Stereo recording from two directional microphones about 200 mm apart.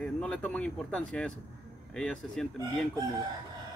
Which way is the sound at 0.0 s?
5° left (ahead or behind).